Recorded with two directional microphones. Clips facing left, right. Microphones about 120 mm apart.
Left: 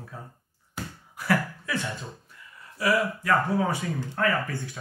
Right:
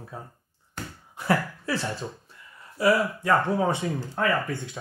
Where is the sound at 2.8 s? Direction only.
25° right (ahead or behind).